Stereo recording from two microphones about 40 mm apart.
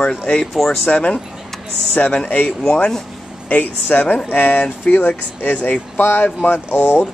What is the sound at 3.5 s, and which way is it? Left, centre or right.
Speech, left.